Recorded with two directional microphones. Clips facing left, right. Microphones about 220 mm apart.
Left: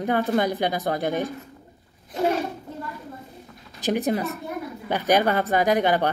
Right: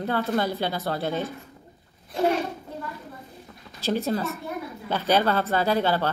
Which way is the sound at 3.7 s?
15° left (ahead or behind).